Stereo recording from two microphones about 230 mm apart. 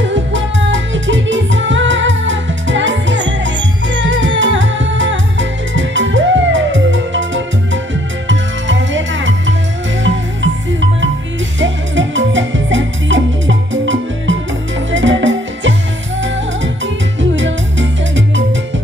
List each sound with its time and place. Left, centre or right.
0.0 s music: right